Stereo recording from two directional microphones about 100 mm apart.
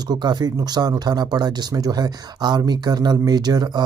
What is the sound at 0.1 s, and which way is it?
Speech, 45° right (ahead or behind).